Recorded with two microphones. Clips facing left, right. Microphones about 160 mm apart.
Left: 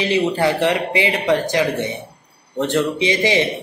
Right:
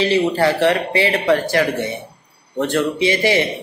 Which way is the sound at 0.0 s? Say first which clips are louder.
Right 2 dB; 15° left (ahead or behind).